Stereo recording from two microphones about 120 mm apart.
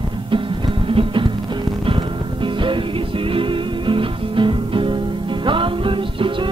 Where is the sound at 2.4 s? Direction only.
45° right (ahead or behind).